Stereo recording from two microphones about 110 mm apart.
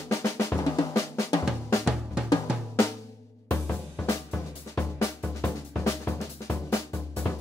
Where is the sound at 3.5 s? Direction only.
20° left (ahead or behind).